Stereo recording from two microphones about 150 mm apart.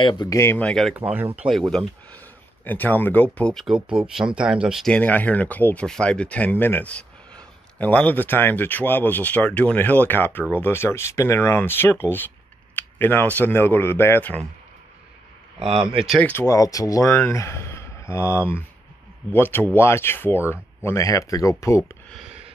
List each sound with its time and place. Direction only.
0.0 s speech: 30° left (ahead or behind)
0.4 s speech: 15° left (ahead or behind)
0.9 s speech: 10° right (ahead or behind)
1.7 s speech: 5° left (ahead or behind)
12.7 s a sound: 15° left (ahead or behind)
13.4 s speech: 15° left (ahead or behind)
15.6 s speech: 35° right (ahead or behind)
16.2 s speech: 15° left (ahead or behind)